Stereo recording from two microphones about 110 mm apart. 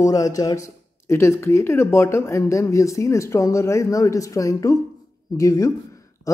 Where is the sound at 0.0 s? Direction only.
30° left (ahead or behind).